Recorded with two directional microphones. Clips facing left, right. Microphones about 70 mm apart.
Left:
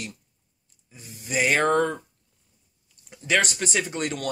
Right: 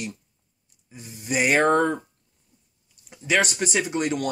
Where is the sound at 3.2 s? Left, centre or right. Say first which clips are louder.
Right 1 dB; centre.